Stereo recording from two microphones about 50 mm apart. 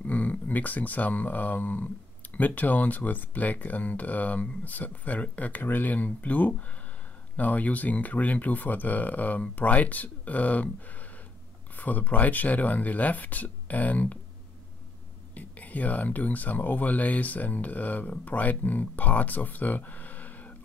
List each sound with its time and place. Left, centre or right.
0.0 s speech: left
15.3 s speech: left